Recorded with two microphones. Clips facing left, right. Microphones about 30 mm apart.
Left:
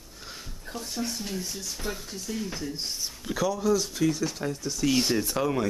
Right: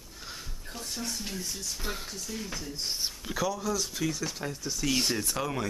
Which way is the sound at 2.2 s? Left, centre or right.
Centre.